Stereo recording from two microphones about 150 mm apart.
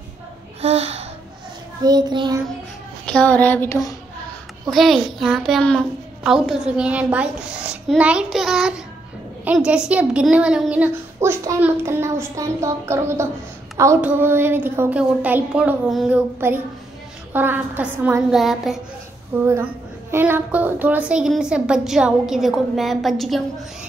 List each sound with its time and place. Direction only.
0.6 s speech: 45° right (ahead or behind)
1.9 s child singing: 25° right (ahead or behind)
3.1 s a sound: 10° left (ahead or behind)
4.6 s a woman's voice: centre (ahead or behind)
18.3 s a woman's voice: centre (ahead or behind)
19.4 s a woman's voice: 15° right (ahead or behind); by 23.4 s centre (ahead or behind)